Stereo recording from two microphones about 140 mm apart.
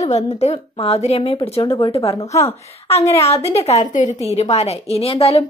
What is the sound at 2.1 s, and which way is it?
Speech, 20° left (ahead or behind).